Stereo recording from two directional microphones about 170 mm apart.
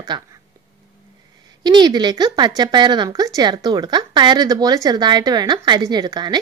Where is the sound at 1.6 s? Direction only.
25° right (ahead or behind).